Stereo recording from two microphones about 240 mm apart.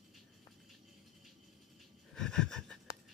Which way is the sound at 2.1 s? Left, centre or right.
Centre.